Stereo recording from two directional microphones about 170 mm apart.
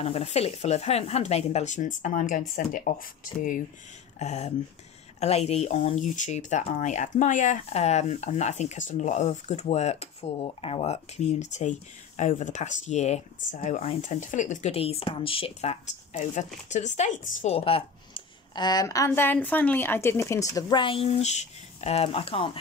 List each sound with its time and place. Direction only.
0.0 s speech: 35° left (ahead or behind); by 3.6 s 50° left (ahead or behind)
4.2 s speech: 40° left (ahead or behind)
17.6 s speech: 35° left (ahead or behind)